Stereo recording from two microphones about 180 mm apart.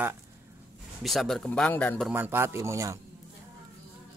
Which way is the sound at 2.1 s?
10° right (ahead or behind).